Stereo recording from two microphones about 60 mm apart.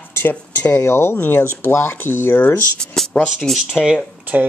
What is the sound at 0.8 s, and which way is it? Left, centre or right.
Speech, left.